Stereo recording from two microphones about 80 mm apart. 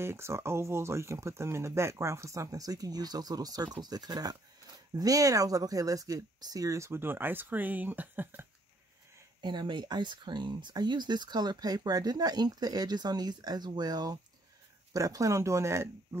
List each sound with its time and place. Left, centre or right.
0.0 s speech: right
9.4 s speech: right